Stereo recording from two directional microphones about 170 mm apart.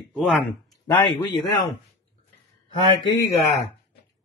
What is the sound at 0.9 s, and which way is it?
Speech, 20° left (ahead or behind).